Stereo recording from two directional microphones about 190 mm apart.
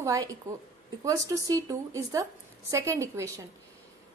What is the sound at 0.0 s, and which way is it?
A woman's voice, 15° right (ahead or behind).